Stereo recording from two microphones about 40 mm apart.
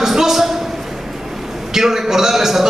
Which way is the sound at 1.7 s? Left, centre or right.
Centre.